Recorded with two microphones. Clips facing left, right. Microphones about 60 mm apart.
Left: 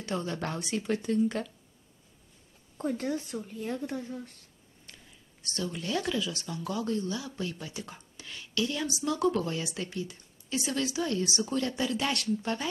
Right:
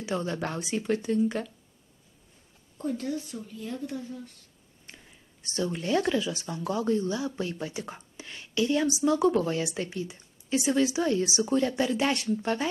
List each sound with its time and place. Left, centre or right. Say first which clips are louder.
0.0 s speech: right 3 dB; centre
2.8 s speech: even; left
4.8 s a sound: right 3 dB; right
6.3 s speech: right 4 dB; right
9.8 s speech: right 3 dB; centre